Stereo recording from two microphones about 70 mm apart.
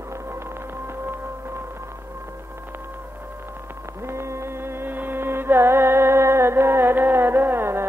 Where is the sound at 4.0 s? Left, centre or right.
Right.